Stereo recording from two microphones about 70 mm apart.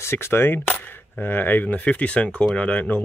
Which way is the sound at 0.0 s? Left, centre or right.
Left.